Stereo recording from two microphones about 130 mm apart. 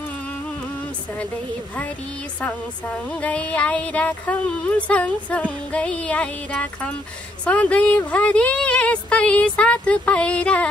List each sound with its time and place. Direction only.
3.1 s speech: 10° left (ahead or behind)